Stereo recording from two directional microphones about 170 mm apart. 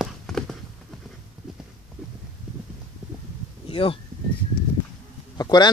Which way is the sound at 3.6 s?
35° left (ahead or behind).